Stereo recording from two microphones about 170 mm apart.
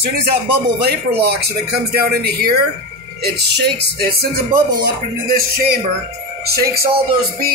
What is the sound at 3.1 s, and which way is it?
Music, 70° right (ahead or behind).